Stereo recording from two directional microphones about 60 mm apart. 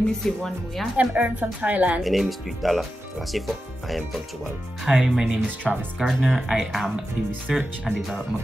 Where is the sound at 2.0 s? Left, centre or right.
Centre.